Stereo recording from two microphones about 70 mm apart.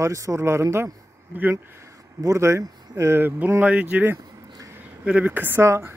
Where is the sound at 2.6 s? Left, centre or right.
Right.